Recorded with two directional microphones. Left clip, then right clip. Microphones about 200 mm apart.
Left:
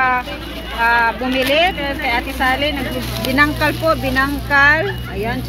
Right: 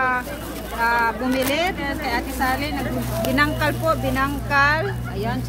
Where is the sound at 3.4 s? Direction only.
20° left (ahead or behind).